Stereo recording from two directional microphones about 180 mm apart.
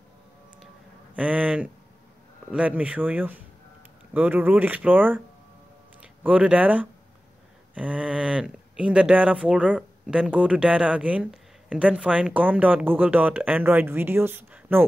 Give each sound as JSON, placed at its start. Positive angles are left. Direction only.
{"t": 1.1, "sound": "speech", "side_deg": -5}
{"t": 6.2, "sound": "speech", "side_deg": -5}